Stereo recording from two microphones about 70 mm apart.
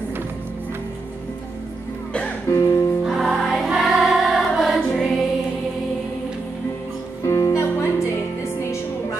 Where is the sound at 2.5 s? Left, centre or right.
Left.